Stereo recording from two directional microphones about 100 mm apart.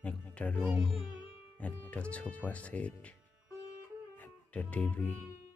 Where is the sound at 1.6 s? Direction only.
15° left (ahead or behind).